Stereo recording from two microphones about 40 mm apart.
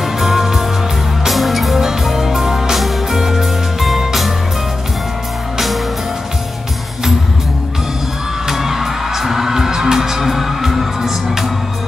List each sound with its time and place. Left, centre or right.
0.0 s music: centre
8.5 s music: centre